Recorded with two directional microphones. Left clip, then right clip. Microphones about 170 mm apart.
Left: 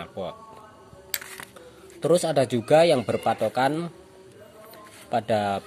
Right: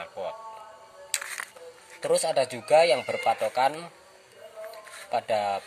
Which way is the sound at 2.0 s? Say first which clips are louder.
Left 3 dB; 10° left (ahead or behind).